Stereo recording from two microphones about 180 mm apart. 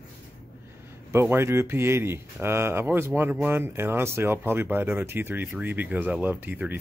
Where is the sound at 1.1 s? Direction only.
15° right (ahead or behind).